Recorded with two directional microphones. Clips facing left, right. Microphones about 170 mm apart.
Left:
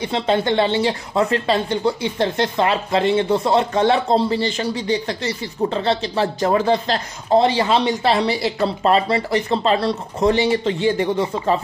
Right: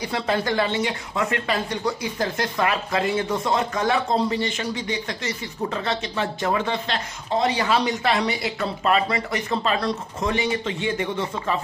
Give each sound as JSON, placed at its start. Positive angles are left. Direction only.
{"t": 0.0, "sound": "speech", "side_deg": 25}